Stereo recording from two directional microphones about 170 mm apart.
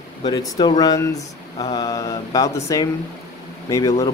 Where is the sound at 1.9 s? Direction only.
20° left (ahead or behind).